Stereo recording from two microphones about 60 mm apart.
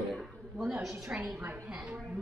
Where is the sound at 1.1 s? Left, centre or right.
Centre.